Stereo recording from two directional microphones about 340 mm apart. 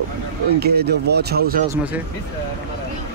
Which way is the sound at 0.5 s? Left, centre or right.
Right.